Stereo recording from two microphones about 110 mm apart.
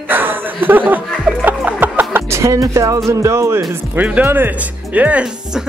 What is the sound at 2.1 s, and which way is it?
Music, 25° right (ahead or behind).